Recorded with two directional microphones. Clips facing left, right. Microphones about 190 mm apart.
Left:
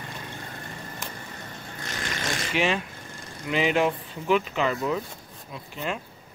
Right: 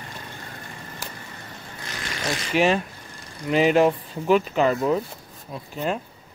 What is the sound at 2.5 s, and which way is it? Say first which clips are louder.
Speech: right 6 dB; 40° right (ahead or behind).